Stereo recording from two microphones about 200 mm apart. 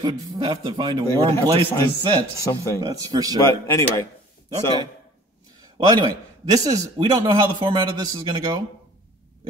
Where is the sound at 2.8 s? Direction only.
20° right (ahead or behind).